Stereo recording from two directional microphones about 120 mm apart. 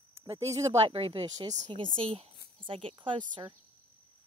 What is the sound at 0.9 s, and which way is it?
Speech, 50° right (ahead or behind).